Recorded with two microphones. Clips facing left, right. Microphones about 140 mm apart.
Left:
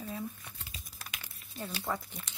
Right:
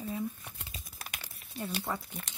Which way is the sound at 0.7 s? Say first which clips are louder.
Right 2 dB; 40° right (ahead or behind).